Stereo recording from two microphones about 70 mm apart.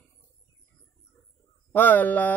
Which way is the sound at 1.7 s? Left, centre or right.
Left.